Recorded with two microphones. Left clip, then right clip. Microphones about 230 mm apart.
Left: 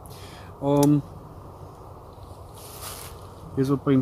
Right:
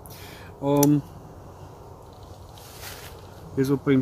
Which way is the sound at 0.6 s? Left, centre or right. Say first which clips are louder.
Even; centre.